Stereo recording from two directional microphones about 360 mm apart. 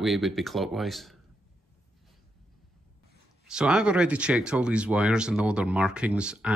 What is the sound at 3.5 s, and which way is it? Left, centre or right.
Speech, centre.